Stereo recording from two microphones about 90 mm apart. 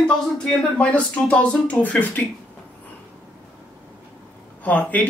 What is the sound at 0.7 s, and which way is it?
Speech, 15° left (ahead or behind).